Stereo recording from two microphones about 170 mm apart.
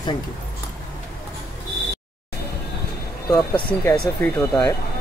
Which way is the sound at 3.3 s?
10° left (ahead or behind).